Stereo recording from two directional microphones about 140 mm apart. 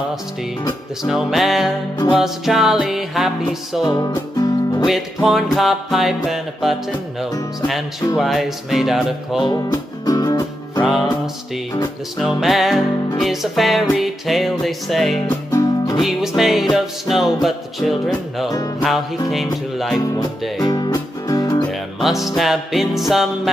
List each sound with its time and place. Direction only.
1.0 s music: centre (ahead or behind)
3.8 s music: 30° left (ahead or behind)
4.8 s music: centre (ahead or behind)
8.2 s music: centre (ahead or behind)
9.4 s music: 30° left (ahead or behind)
10.8 s music: centre (ahead or behind)
12.2 s music: 5° right (ahead or behind)
15.2 s music: 25° left (ahead or behind)
16.0 s music: centre (ahead or behind)
20.6 s music: 30° left (ahead or behind)
22.0 s music: centre (ahead or behind)